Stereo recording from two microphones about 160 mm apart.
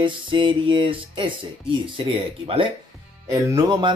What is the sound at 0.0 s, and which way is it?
Speech, 30° right (ahead or behind).